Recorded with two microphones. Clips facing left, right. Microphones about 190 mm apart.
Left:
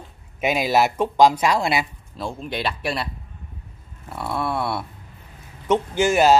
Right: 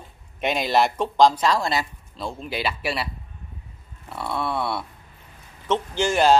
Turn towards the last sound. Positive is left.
turn(degrees=5)  # may be behind; listen again after turning